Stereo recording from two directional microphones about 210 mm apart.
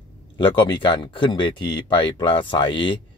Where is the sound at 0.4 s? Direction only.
25° left (ahead or behind).